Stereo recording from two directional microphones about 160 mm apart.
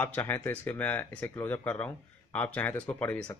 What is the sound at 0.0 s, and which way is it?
Speech, 10° left (ahead or behind).